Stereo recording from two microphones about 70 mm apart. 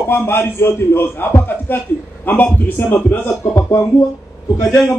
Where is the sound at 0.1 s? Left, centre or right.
Left.